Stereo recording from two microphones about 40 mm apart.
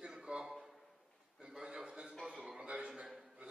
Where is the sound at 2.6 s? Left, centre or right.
Right.